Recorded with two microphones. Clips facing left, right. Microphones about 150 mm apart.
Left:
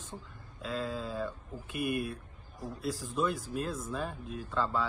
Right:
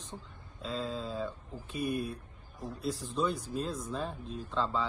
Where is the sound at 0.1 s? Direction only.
Centre (ahead or behind).